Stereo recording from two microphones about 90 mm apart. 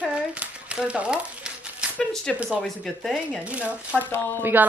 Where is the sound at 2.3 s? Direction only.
5° left (ahead or behind).